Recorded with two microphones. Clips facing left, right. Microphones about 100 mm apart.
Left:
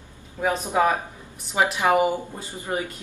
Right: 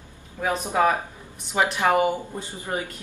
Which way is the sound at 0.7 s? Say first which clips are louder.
Right 1 dB; 15° left (ahead or behind).